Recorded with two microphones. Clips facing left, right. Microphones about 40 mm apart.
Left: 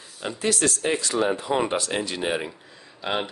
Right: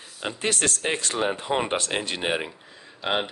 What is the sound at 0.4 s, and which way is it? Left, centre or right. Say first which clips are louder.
Speech: left 2 dB; right.